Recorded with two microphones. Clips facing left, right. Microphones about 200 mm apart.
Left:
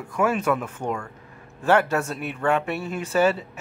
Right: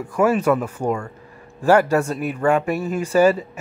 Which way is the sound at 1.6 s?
10° right (ahead or behind).